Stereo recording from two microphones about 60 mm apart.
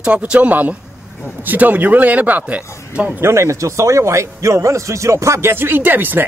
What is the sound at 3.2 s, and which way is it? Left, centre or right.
A man's voice, right.